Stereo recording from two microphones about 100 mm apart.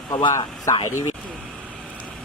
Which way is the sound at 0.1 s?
45° left (ahead or behind).